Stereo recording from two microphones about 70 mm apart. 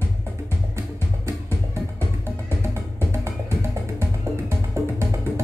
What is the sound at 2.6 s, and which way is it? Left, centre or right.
Music, right.